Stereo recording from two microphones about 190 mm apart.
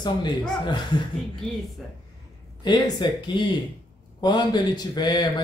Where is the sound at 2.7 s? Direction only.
25° left (ahead or behind).